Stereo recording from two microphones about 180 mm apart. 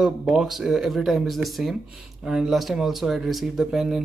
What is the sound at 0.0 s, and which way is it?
Speech, 5° right (ahead or behind).